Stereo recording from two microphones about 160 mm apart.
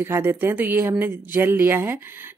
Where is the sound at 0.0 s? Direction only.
15° right (ahead or behind).